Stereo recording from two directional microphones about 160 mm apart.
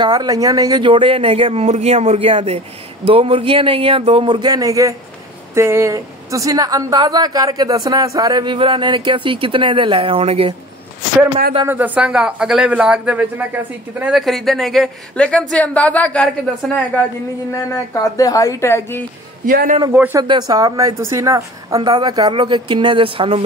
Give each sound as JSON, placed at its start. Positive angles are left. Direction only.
{"t": 0.0, "sound": "a woman's voice", "side_deg": -25}
{"t": 11.6, "sound": "a woman's voice", "side_deg": -10}
{"t": 17.9, "sound": "a woman's voice", "side_deg": 20}
{"t": 19.4, "sound": "a man's voice", "side_deg": -60}
{"t": 19.9, "sound": "speech", "side_deg": -10}
{"t": 20.2, "sound": "a woman's voice", "side_deg": -25}